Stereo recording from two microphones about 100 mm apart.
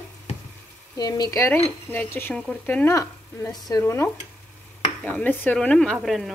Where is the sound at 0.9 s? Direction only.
40° left (ahead or behind).